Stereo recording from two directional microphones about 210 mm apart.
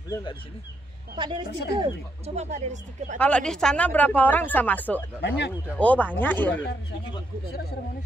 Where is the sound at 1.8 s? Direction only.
30° right (ahead or behind).